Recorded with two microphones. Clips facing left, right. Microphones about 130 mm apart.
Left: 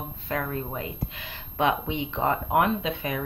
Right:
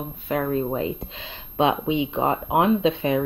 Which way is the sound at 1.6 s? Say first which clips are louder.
Right 4 dB; 20° right (ahead or behind).